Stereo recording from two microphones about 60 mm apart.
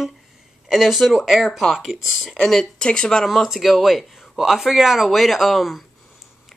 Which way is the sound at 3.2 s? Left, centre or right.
Centre.